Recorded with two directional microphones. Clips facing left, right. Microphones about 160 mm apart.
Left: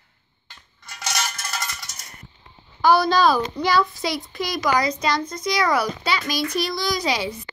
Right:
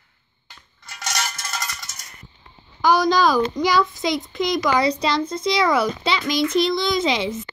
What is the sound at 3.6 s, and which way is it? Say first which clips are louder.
Speech: right 2 dB; 30° left (ahead or behind).